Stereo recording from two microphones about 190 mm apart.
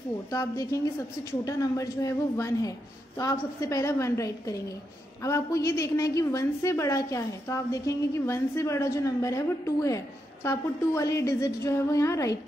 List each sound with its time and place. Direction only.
0.3 s a woman's voice: 15° left (ahead or behind)